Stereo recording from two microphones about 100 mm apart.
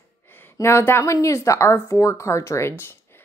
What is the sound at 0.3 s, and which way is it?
Speech, 25° left (ahead or behind).